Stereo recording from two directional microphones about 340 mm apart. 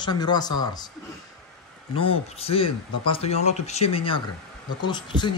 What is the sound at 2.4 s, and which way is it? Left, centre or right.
Speech, centre.